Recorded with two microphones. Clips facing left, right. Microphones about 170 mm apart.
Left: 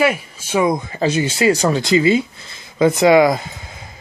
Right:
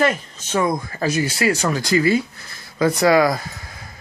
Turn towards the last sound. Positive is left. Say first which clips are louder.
# left 1 dB
turn(degrees=20)  # may be behind; listen again after turning